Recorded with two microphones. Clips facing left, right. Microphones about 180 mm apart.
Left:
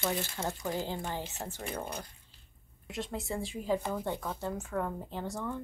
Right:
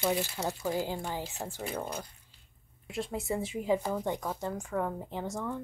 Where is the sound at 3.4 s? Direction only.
20° right (ahead or behind).